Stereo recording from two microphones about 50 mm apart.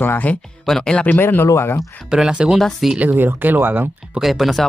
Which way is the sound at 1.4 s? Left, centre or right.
Left.